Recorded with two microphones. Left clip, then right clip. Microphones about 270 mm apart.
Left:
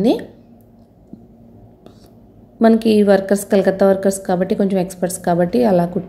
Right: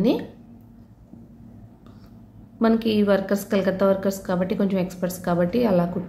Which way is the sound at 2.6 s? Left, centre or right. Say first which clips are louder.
Left 8 dB; centre.